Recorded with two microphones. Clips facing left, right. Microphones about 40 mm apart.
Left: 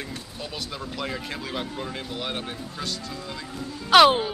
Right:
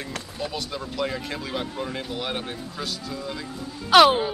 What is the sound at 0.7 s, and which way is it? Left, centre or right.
Speech, centre.